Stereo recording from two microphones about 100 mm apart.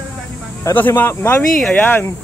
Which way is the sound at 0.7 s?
20° left (ahead or behind).